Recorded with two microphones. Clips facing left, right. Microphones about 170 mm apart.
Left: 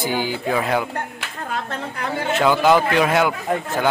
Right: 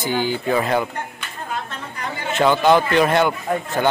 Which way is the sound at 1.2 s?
75° left (ahead or behind).